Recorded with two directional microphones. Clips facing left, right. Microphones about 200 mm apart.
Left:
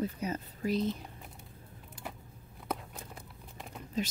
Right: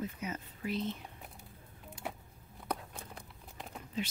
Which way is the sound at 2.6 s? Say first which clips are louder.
Left 1 dB; 5° left (ahead or behind).